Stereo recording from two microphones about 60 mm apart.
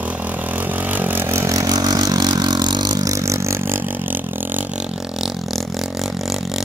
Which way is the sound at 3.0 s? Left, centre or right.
Right.